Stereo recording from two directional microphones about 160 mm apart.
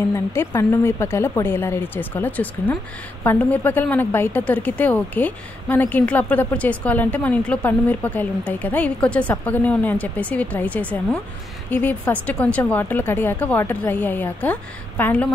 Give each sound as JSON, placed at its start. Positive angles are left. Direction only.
{"t": 0.1, "sound": "a woman's voice", "side_deg": 15}